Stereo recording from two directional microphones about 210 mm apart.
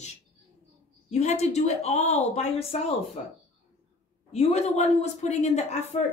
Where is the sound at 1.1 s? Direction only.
30° left (ahead or behind).